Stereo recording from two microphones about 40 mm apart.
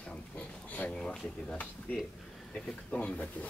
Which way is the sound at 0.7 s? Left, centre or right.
Left.